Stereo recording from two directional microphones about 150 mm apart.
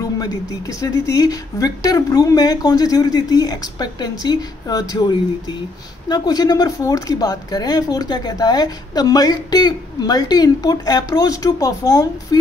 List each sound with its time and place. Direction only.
0.0 s speech: 20° left (ahead or behind)